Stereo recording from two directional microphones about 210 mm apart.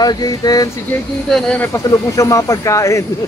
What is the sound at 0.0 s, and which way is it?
Speech, 20° left (ahead or behind).